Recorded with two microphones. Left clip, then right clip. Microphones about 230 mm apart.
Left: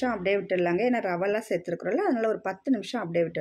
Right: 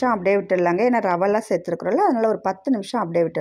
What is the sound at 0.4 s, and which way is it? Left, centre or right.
Speech, centre.